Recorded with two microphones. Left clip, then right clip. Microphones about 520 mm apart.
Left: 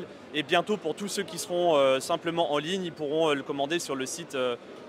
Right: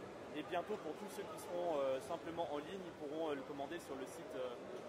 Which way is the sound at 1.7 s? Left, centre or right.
Left.